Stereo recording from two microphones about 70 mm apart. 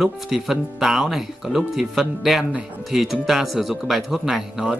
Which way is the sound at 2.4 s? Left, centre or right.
Centre.